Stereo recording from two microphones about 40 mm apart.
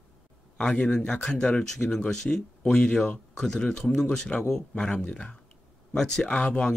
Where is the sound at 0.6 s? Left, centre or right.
Centre.